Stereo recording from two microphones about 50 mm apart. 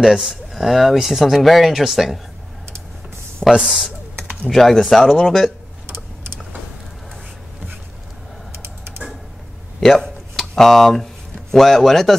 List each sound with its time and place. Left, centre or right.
0.0 s speech: centre
3.5 s speech: centre
4.5 s speech: centre
8.5 s typing: right
9.8 s a sound: centre
10.5 s speech: centre